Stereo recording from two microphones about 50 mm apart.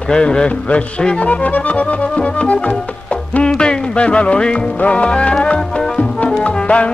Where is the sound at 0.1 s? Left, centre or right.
Centre.